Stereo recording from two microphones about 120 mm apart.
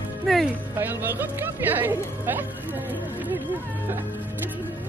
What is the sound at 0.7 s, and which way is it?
Speech, 15° right (ahead or behind).